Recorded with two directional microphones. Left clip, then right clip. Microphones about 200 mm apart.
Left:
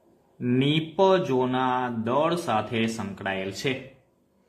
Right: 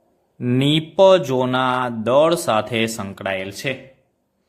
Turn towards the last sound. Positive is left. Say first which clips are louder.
# right 4 dB
turn(degrees=-30)  # may be behind; listen again after turning